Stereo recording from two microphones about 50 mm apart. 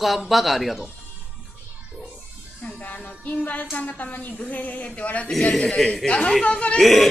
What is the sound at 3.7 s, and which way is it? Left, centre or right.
Speech, left.